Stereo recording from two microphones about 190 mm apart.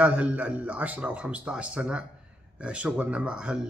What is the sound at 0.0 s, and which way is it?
Speech, 5° right (ahead or behind).